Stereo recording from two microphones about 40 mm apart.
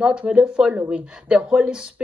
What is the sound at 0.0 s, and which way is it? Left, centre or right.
A woman's voice, right.